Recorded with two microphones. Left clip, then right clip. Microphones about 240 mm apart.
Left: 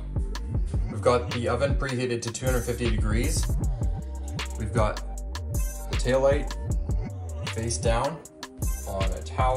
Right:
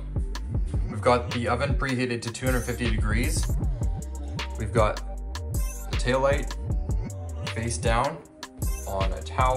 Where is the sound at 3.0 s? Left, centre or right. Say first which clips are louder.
Right 1 dB; left.